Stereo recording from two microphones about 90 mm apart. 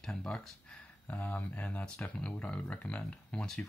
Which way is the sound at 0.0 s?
5° left (ahead or behind).